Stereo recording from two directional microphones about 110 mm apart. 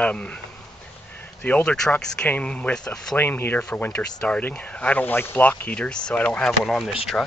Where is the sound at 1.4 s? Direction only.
10° left (ahead or behind).